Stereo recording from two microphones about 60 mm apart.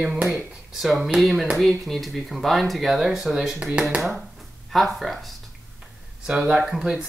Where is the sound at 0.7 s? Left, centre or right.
Centre.